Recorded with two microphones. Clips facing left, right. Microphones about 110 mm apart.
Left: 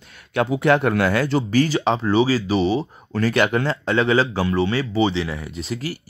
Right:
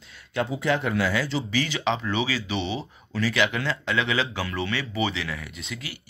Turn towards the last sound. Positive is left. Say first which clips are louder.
# left 10 dB
turn(degrees=40)  # may be behind; listen again after turning